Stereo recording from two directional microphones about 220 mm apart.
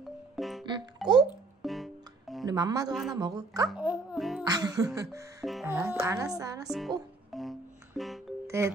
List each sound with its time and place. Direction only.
0.4 s music: centre (ahead or behind)
2.4 s a woman's voice: 15° right (ahead or behind)
3.6 s a child's voice: 5° right (ahead or behind)
4.5 s a woman's voice: 15° right (ahead or behind)
5.4 s music: centre (ahead or behind)
5.8 s a woman's voice: 10° right (ahead or behind)
7.3 s music: centre (ahead or behind)
8.5 s speech: 10° right (ahead or behind)